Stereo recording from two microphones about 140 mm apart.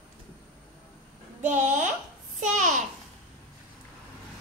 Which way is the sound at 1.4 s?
60° right (ahead or behind).